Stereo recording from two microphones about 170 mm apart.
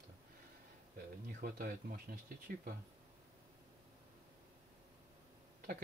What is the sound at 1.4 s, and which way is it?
Speech, 60° right (ahead or behind).